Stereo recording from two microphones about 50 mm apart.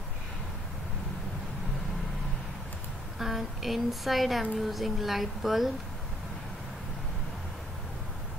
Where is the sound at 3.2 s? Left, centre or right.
Centre.